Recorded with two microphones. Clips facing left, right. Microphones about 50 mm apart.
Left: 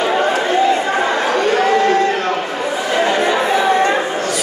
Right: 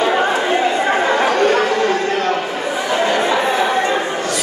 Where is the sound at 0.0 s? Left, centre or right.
Centre.